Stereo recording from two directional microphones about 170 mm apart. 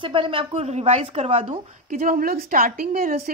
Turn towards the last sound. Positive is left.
turn(degrees=-60)  # may be behind; listen again after turning